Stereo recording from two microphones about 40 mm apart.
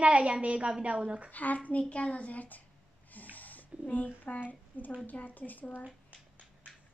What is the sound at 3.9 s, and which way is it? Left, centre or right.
A child's voice, left.